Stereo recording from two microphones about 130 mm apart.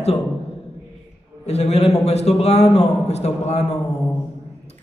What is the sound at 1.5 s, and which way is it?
Speech, 55° left (ahead or behind).